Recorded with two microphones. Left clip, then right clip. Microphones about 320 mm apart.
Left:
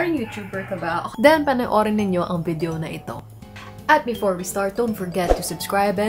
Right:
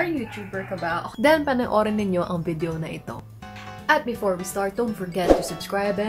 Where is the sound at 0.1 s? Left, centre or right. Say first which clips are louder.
Left 3 dB; centre.